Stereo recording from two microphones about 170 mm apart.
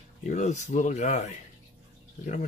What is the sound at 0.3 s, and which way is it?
Speech, 45° left (ahead or behind).